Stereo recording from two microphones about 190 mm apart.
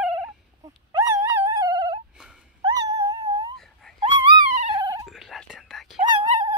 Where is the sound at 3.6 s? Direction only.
Centre (ahead or behind).